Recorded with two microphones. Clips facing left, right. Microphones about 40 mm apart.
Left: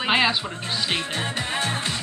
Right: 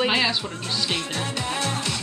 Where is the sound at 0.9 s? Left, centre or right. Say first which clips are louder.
Left 1 dB; left.